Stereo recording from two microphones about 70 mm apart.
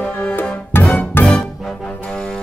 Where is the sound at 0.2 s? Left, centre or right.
Left.